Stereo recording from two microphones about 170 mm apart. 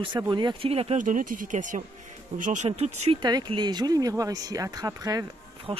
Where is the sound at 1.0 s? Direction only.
50° right (ahead or behind).